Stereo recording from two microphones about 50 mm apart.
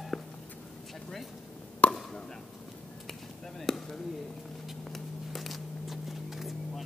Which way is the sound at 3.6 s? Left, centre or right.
Centre.